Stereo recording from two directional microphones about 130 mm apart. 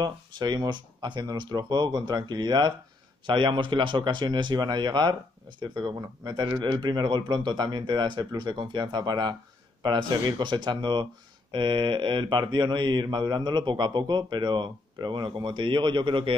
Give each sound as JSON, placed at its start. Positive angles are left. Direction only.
{"t": 0.0, "sound": "speech", "side_deg": -35}